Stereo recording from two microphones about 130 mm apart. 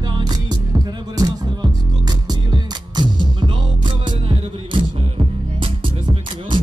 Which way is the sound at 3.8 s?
40° right (ahead or behind).